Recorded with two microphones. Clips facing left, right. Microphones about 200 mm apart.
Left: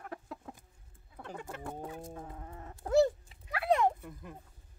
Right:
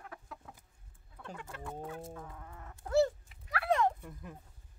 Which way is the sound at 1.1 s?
30° left (ahead or behind).